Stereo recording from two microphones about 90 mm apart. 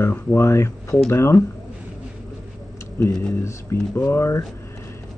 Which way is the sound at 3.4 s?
30° left (ahead or behind).